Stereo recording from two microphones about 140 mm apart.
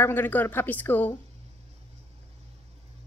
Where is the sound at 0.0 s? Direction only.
15° left (ahead or behind).